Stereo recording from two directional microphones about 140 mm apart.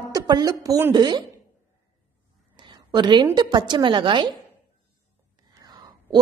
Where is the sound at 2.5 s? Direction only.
35° right (ahead or behind).